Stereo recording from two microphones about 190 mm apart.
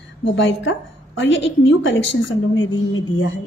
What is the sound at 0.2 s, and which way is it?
A woman's voice, 75° left (ahead or behind).